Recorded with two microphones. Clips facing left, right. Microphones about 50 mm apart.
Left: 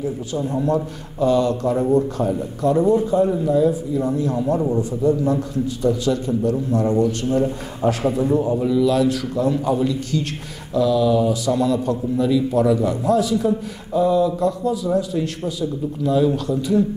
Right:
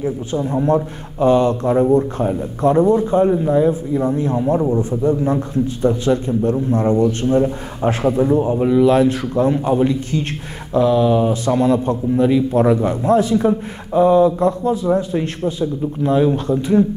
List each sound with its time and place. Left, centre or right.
0.0 s speech: right